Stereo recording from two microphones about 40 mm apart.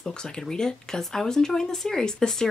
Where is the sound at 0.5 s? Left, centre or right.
Centre.